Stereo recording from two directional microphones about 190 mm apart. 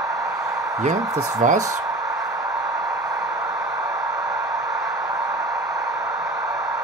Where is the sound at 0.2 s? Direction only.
15° right (ahead or behind).